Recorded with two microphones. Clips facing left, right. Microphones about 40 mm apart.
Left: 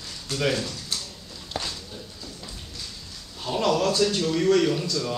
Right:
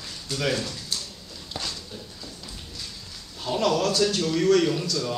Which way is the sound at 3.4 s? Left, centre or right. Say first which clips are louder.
Even; centre.